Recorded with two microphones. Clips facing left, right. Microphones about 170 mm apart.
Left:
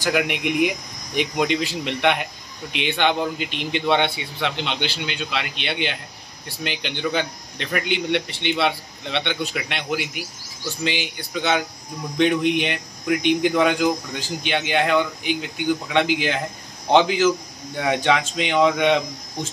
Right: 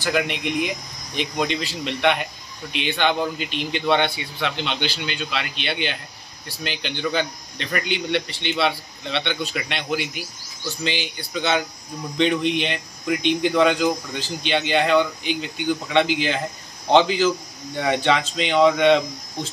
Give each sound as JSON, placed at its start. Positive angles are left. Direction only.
{"t": 0.0, "sound": "speech", "side_deg": 10}